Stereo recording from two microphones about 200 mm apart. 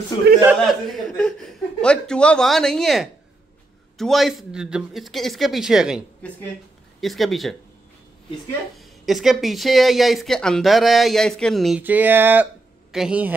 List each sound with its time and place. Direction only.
0.1 s a man's voice: 25° left (ahead or behind)
0.7 s speech: 5° left (ahead or behind)
8.7 s speech: centre (ahead or behind)